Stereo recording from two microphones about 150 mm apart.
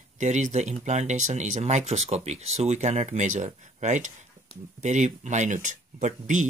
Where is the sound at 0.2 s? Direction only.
50° right (ahead or behind).